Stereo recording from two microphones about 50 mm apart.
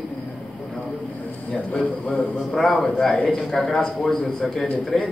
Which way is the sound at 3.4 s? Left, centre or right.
Centre.